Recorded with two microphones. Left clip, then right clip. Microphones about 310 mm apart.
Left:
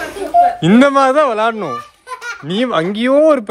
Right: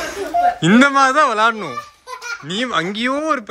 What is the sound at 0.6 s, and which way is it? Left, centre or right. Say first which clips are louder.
Speech: left 2 dB; centre.